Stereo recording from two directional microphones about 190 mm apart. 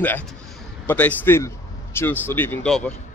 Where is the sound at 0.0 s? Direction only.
10° left (ahead or behind).